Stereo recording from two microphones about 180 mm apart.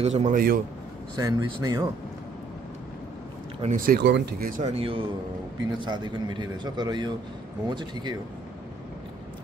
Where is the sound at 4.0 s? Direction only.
70° right (ahead or behind); by 4.7 s 50° right (ahead or behind).